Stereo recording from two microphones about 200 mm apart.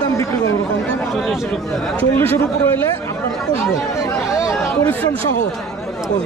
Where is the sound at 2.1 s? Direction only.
10° left (ahead or behind).